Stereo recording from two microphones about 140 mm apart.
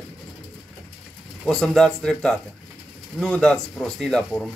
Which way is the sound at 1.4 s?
5° left (ahead or behind).